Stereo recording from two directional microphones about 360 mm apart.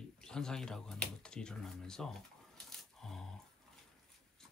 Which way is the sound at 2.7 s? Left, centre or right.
Centre.